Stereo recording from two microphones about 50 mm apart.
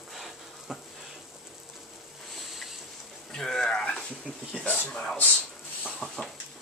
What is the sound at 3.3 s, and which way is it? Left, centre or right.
Speech, centre.